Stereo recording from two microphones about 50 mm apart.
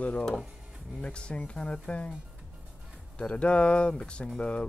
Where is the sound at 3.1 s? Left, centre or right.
Left.